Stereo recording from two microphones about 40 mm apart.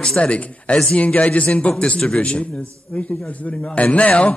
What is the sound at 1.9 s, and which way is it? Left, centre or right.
A man's voice, centre.